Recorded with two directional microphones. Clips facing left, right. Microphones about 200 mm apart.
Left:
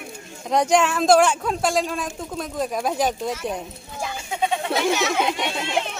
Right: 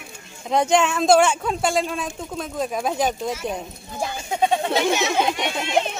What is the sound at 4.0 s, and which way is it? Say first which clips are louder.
Speech: right 3 dB; 35° right (ahead or behind).